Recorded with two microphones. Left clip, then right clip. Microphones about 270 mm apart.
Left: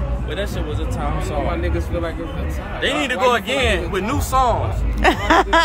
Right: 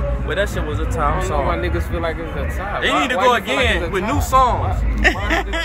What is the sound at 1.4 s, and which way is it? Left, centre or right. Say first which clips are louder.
Speech: right 3 dB; centre.